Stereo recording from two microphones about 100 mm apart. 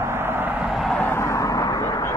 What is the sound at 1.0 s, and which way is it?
Vehicle, 25° left (ahead or behind).